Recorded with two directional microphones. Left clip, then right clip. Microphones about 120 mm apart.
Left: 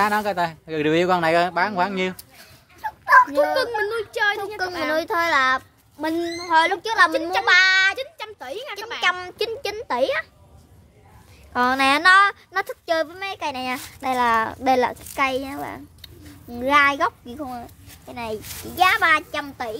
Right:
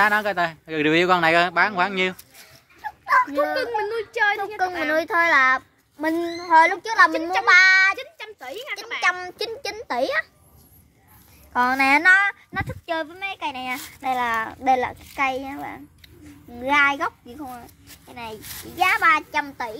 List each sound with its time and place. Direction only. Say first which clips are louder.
0.0 s speech: right 1 dB; 5° right (ahead or behind)
3.1 s speech: left 4 dB; 30° left (ahead or behind)
4.6 s a child's voice: right 5 dB; 20° left (ahead or behind)
4.9 s a child's voice: right 2 dB; 5° left (ahead or behind)
7.1 s a child's voice: left 1 dB; 40° left (ahead or behind)
7.4 s a child's voice: right 2 dB; centre (ahead or behind)
8.0 s speech: left 4 dB; 40° left (ahead or behind)
9.0 s a child's voice: left 1 dB; 10° left (ahead or behind); by 10.2 s 5° right (ahead or behind)
11.5 s a child's voice: even; 25° left (ahead or behind)
12.1 s a child's voice: left 4 dB; 50° left (ahead or behind)
13.4 s a child's voice: left 3 dB; 90° left; by 17.5 s 50° left (ahead or behind)
17.5 s speech: left 4 dB; 70° left (ahead or behind)
18.8 s a child's voice: left 1 dB; 30° left (ahead or behind)
19.3 s a child's voice: right 2 dB; 5° left (ahead or behind)